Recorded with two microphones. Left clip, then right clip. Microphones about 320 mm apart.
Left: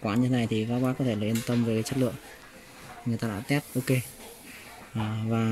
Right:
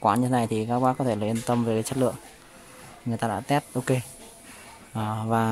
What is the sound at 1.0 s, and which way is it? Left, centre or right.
Speech, right.